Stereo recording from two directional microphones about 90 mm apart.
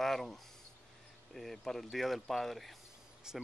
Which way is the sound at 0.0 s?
5° left (ahead or behind).